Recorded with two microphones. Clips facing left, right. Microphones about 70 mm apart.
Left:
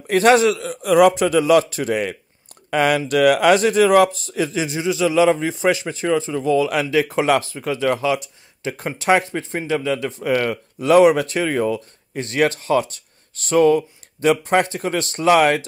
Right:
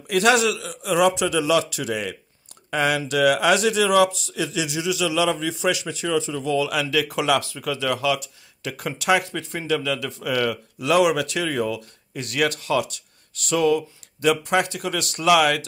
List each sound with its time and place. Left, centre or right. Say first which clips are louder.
0.0 s speech: left 5 dB; left